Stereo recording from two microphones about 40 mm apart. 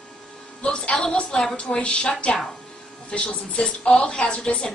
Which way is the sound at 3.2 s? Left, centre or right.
Centre.